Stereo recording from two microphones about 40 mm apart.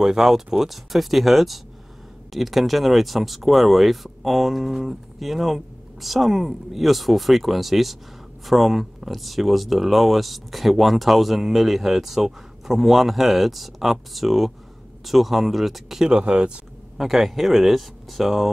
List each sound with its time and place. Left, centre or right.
0.0 s speech: centre
16.0 s speech: right
16.9 s speech: centre